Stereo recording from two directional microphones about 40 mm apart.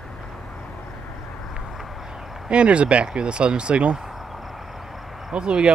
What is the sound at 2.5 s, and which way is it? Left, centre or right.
Speech, right.